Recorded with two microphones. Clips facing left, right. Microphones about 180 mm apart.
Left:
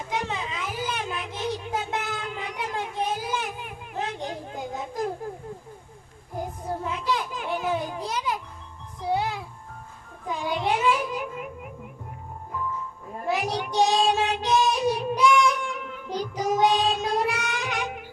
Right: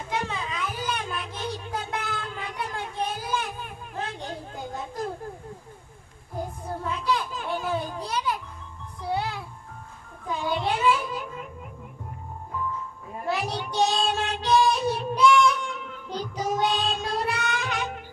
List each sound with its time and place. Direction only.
0.1 s a sound: 15° left (ahead or behind)
6.8 s children playing: 15° left (ahead or behind)
9.1 s music: 15° left (ahead or behind)
10.2 s child singing: 15° left (ahead or behind)
13.3 s child singing: 15° left (ahead or behind)